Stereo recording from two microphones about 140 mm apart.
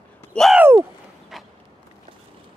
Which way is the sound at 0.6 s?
15° right (ahead or behind).